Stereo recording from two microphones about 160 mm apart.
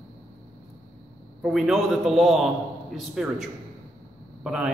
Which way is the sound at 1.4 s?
5° right (ahead or behind).